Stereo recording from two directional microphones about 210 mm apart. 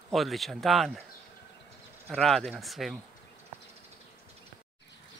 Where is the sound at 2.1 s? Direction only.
Centre (ahead or behind).